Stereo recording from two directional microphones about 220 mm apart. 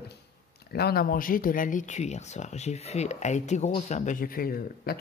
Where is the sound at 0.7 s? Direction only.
45° left (ahead or behind).